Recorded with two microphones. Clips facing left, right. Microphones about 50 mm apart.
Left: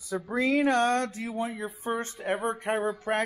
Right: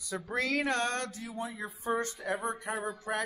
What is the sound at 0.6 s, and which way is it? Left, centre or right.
Speech, left.